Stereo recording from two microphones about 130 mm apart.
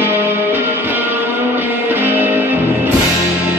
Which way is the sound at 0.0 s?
15° right (ahead or behind).